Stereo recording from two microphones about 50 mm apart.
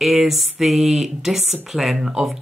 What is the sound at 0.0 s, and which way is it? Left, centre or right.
Speech, centre.